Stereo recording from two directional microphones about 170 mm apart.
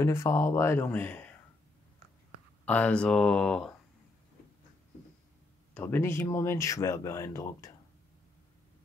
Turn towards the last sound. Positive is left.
turn(degrees=20)  # may be behind; listen again after turning